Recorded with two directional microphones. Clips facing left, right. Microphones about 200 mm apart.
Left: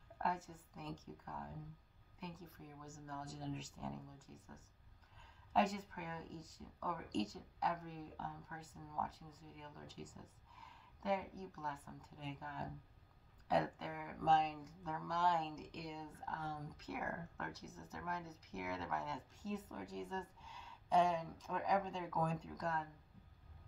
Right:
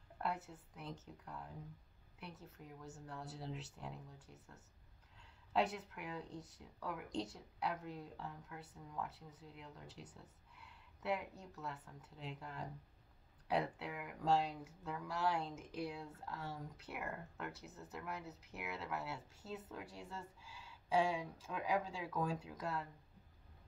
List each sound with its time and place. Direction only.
0.2 s speech: 5° right (ahead or behind)
5.5 s speech: centre (ahead or behind)